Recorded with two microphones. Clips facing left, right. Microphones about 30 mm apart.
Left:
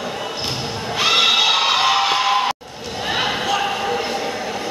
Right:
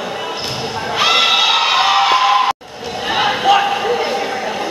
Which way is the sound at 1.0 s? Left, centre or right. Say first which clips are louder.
Right 2 dB; centre.